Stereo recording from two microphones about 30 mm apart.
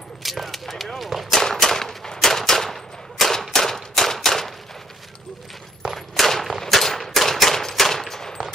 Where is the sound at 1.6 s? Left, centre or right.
Centre.